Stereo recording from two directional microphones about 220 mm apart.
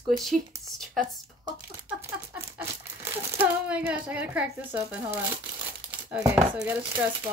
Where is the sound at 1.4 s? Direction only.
10° right (ahead or behind).